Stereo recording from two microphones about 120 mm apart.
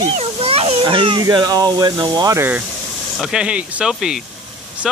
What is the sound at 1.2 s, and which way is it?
Speech, 30° right (ahead or behind).